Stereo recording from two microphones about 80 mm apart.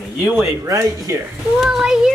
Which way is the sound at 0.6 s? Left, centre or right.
Right.